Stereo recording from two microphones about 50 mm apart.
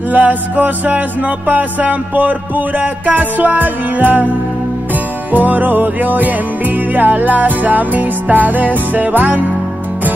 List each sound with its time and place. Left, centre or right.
0.1 s music: right
5.3 s music: right